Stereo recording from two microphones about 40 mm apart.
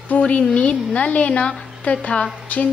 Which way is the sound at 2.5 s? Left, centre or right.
Left.